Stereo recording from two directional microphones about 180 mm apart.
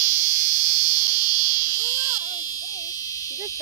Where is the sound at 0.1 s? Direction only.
45° left (ahead or behind).